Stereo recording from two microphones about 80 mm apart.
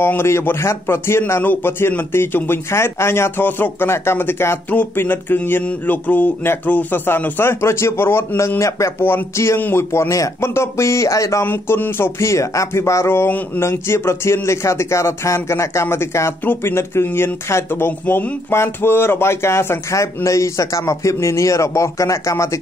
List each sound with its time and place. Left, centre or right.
0.0 s a man's voice: left
11.4 s speech: left